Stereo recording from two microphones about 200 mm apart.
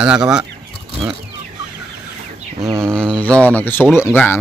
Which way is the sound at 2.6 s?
15° right (ahead or behind).